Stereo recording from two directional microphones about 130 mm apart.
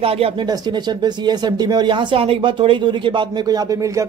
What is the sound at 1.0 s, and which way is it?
Speech, 35° right (ahead or behind).